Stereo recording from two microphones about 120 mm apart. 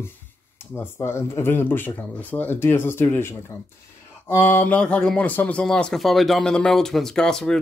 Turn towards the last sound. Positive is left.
turn(degrees=5)  # may be behind; listen again after turning